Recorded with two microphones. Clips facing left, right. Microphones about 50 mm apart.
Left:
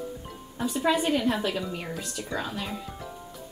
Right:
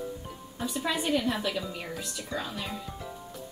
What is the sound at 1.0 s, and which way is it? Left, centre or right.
Speech, centre.